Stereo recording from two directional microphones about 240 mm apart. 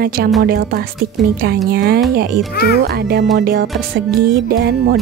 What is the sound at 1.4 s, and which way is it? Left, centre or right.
Speech, right.